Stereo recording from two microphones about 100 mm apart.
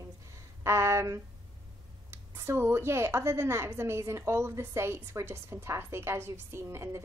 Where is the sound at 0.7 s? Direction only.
30° right (ahead or behind).